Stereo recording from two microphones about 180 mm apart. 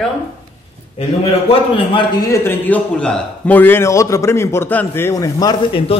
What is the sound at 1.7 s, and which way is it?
A man's voice, 30° left (ahead or behind).